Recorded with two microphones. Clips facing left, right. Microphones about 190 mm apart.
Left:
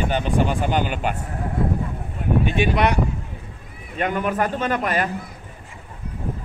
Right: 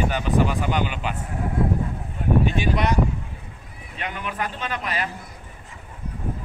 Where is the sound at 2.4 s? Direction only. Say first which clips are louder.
Left 3 dB; 65° left (ahead or behind).